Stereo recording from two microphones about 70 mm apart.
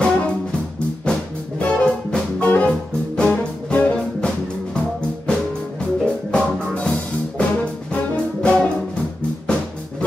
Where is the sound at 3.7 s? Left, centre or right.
Left.